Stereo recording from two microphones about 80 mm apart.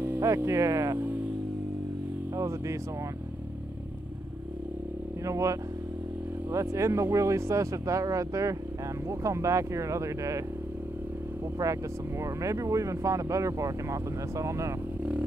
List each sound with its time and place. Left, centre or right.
0.2 s speech: right
2.3 s speech: right
5.2 s speech: right
11.6 s speech: right